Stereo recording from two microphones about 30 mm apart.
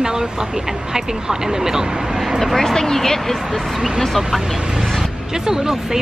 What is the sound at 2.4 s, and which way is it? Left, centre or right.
Speech, centre.